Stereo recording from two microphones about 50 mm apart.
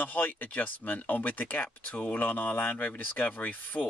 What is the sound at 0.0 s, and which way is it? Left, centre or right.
Speech, left.